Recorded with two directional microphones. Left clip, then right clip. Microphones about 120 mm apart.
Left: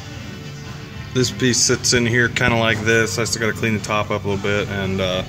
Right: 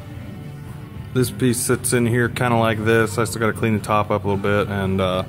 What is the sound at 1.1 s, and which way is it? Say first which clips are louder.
Speech: left 2 dB; 10° right (ahead or behind).